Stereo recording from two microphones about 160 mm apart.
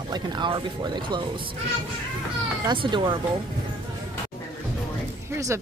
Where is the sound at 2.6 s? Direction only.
30° right (ahead or behind).